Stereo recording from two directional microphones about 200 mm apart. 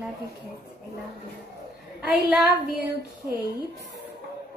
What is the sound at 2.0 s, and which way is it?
Speech, 5° right (ahead or behind).